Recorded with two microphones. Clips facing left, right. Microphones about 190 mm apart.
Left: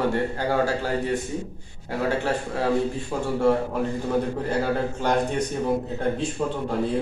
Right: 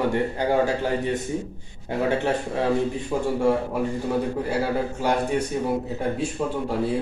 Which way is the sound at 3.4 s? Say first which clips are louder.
Left 3 dB; 10° right (ahead or behind).